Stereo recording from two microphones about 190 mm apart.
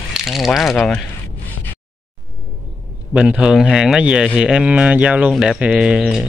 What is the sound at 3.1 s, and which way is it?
Speech, 5° right (ahead or behind).